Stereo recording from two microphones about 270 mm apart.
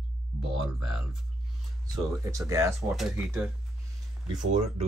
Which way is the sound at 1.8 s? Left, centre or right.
Centre.